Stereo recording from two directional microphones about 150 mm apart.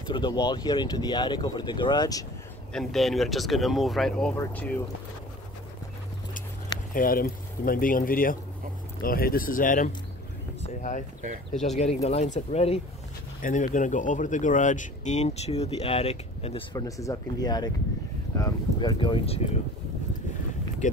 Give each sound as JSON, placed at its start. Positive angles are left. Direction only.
{"t": 0.1, "sound": "speech", "side_deg": 30}
{"t": 2.7, "sound": "speech", "side_deg": 0}
{"t": 6.9, "sound": "speech", "side_deg": 75}
{"t": 10.6, "sound": "a sound", "side_deg": 55}
{"t": 11.6, "sound": "speech", "side_deg": 50}
{"t": 13.4, "sound": "speech", "side_deg": 65}
{"t": 16.7, "sound": "speech", "side_deg": 20}